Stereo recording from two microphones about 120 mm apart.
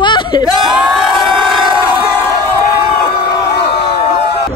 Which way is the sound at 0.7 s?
5° right (ahead or behind).